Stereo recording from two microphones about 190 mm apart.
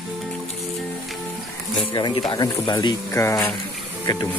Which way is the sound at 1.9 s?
25° left (ahead or behind).